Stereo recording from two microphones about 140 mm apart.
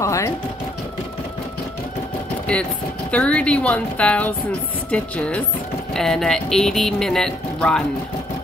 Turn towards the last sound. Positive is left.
turn(degrees=5)  # may be behind; listen again after turning